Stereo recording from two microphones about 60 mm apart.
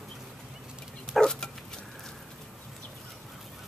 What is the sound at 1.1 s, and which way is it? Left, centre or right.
Dog, centre.